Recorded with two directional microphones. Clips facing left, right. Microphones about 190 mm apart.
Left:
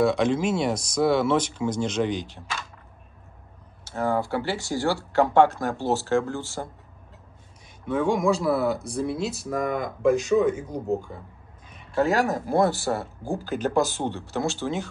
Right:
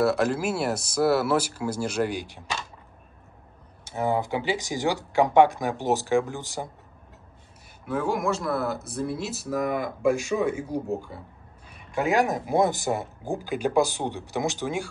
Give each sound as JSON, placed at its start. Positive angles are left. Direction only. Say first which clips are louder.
{"t": 0.0, "sound": "speech", "louder": "left 2 dB", "side_deg": -5}
{"t": 3.8, "sound": "speech", "louder": "even", "side_deg": -15}
{"t": 7.8, "sound": "speech", "louder": "left 4 dB", "side_deg": -5}